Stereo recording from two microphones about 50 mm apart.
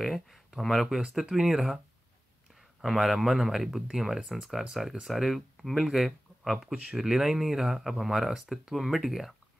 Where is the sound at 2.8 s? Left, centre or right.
Centre.